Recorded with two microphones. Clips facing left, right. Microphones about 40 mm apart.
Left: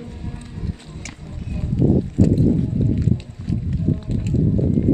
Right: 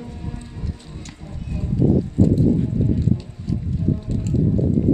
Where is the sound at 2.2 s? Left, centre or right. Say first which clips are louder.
Even; left.